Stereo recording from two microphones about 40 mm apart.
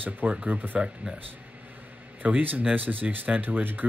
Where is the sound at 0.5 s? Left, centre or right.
Right.